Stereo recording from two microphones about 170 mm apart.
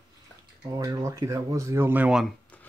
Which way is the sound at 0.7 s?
20° right (ahead or behind).